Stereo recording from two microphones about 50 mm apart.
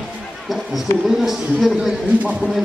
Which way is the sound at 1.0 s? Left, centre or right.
Centre.